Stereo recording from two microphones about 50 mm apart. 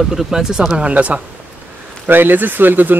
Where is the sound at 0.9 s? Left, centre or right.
Right.